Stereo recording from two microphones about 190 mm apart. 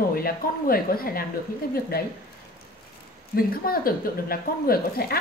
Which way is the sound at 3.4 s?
50° left (ahead or behind).